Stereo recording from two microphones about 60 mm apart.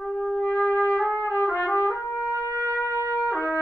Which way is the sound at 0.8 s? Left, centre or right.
Left.